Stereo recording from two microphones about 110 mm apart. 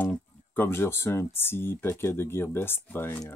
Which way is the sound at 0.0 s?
15° left (ahead or behind).